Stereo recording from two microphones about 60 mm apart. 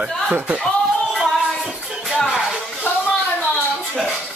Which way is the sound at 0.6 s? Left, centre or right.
Centre.